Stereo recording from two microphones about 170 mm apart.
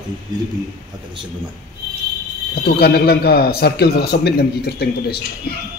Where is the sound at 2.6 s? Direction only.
65° left (ahead or behind).